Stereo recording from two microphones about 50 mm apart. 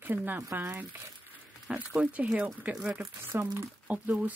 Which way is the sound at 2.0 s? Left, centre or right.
Right.